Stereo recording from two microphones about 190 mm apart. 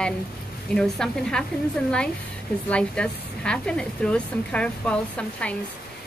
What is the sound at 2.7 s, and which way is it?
Speech, 5° left (ahead or behind).